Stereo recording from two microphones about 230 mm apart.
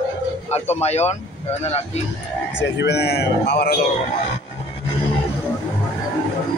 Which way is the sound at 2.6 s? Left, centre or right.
Left.